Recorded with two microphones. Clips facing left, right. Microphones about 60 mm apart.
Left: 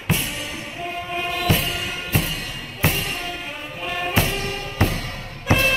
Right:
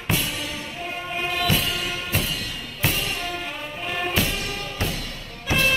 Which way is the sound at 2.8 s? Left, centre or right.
Left.